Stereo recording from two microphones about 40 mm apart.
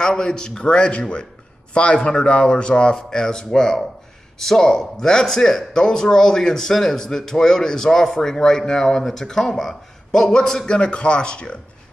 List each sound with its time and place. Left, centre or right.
0.0 s a man's voice: centre
10.8 s speech: left